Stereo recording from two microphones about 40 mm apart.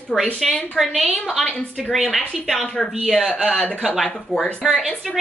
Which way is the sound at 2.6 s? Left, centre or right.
Centre.